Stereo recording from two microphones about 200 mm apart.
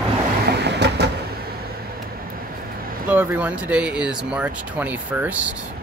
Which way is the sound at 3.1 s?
10° right (ahead or behind).